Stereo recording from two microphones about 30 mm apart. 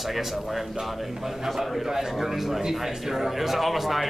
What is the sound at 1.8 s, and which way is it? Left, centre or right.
A man's voice, centre.